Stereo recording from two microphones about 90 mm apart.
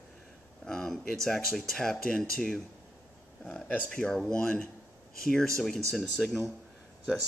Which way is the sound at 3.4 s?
15° left (ahead or behind).